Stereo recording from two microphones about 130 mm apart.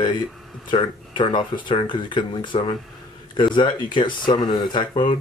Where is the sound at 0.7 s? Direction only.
40° left (ahead or behind).